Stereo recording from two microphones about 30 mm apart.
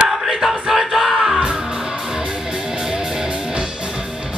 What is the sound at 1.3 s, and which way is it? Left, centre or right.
Music, right.